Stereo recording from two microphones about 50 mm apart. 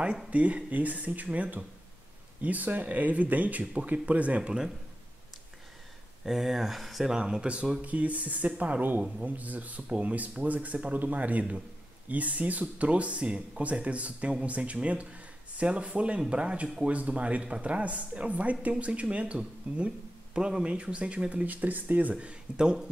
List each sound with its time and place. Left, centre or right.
0.3 s speech: right
6.2 s speech: centre
7.1 s speech: centre
7.8 s speech: right
21.5 s speech: right; by 22.8 s centre